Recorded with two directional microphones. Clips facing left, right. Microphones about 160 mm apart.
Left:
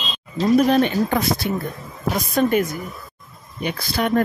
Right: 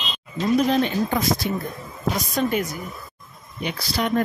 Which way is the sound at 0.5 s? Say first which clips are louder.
Left 3 dB; 60° left (ahead or behind).